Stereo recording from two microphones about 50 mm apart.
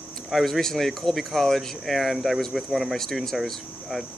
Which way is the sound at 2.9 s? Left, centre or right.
Centre.